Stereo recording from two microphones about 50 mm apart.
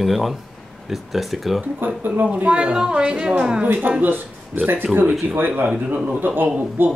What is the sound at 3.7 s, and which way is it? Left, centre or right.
A woman's voice, right.